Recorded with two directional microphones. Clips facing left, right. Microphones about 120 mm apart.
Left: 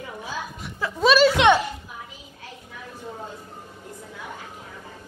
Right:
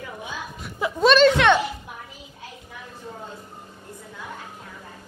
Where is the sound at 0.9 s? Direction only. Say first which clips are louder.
Right 2 dB; 5° left (ahead or behind).